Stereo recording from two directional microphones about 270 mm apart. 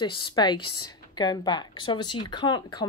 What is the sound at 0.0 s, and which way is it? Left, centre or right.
Speech, centre.